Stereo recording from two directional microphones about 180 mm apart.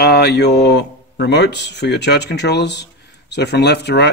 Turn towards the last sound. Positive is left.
turn(degrees=70)  # may be behind; listen again after turning